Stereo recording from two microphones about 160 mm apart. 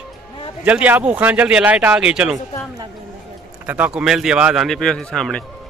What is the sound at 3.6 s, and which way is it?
Speech, 10° right (ahead or behind).